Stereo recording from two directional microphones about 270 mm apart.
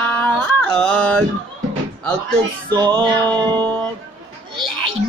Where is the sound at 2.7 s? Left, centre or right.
Centre.